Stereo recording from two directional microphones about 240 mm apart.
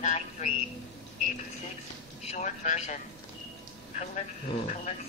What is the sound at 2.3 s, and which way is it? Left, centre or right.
Speech, left.